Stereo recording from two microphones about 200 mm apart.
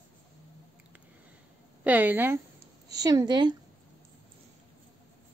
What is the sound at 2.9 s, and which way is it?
Speech, 20° right (ahead or behind).